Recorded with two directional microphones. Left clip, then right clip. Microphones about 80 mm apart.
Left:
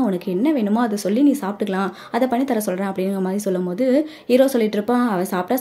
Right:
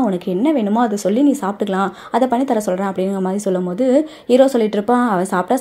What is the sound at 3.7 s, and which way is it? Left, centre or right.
A woman's voice, right.